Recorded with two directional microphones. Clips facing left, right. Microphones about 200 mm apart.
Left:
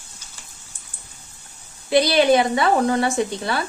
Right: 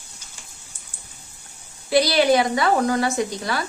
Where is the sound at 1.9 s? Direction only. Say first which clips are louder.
Left 1 dB; 20° left (ahead or behind).